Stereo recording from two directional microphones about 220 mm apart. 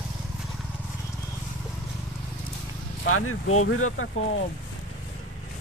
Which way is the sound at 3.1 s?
75° left (ahead or behind).